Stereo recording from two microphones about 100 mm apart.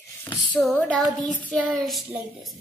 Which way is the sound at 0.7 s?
15° left (ahead or behind).